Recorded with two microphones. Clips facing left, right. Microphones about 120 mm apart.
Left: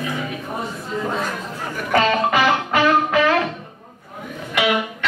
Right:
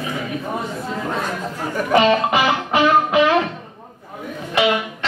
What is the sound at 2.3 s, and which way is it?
Music, 20° right (ahead or behind).